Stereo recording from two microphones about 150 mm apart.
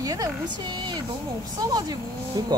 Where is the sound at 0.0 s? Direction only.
25° right (ahead or behind).